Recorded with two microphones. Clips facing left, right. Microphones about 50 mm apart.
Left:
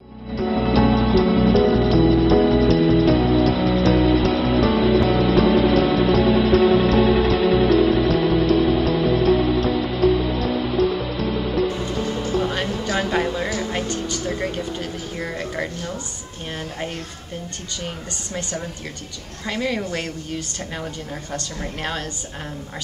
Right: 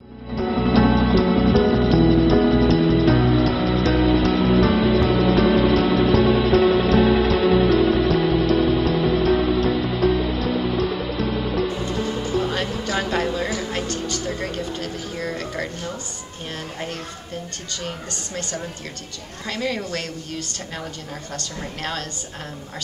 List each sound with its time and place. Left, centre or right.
0.6 s music: centre
13.6 s speech: centre
18.3 s speech: centre